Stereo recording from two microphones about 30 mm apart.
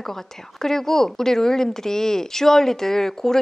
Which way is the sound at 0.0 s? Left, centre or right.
Centre.